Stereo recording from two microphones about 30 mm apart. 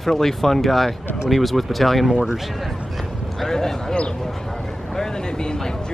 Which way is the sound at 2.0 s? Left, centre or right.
Centre.